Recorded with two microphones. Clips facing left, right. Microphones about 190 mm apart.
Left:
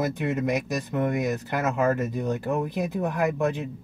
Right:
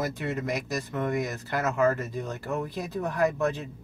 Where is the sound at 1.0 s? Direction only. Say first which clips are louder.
Left 4 dB; 15° left (ahead or behind).